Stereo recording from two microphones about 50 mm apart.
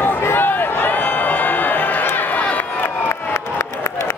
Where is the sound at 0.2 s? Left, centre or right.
Left.